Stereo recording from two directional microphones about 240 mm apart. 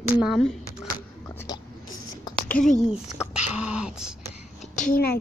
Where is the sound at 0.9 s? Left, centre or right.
Centre.